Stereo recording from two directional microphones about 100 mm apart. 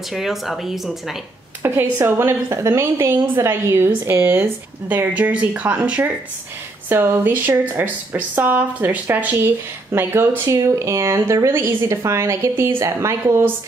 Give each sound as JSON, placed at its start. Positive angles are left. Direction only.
{"t": 0.1, "sound": "speech", "side_deg": 0}
{"t": 1.6, "sound": "speech", "side_deg": -25}